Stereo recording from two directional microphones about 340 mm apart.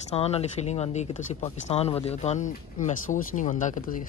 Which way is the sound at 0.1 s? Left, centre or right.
Centre.